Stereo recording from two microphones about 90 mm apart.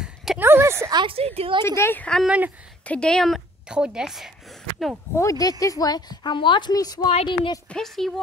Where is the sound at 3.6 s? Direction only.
10° right (ahead or behind).